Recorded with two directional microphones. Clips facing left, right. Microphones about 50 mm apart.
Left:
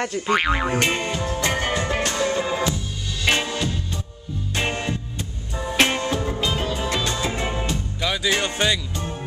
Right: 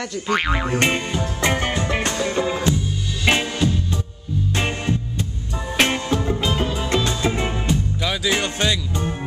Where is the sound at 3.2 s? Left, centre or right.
Centre.